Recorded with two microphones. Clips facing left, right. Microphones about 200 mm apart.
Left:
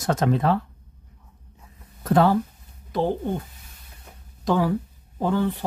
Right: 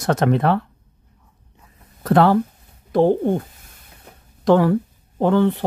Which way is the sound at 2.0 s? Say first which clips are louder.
Right 4 dB; 75° right (ahead or behind).